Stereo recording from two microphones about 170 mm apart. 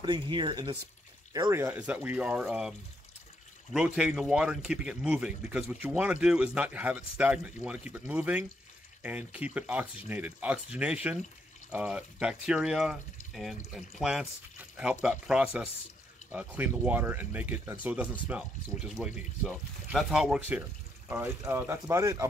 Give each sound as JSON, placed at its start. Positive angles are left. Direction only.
{"t": 0.0, "sound": "speech", "side_deg": -25}
{"t": 3.7, "sound": "speech", "side_deg": -5}